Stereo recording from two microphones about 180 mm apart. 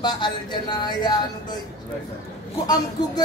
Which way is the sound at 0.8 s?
25° left (ahead or behind).